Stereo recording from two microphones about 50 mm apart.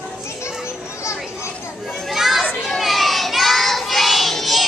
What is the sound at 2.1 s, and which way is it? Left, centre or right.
Children playing, centre.